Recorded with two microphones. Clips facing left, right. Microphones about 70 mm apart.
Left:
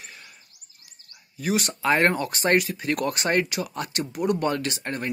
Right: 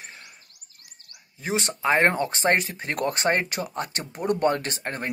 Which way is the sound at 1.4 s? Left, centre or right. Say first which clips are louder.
Left 1 dB; right.